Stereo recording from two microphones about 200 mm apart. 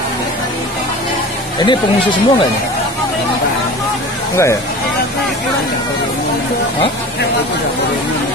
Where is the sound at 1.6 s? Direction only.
25° left (ahead or behind).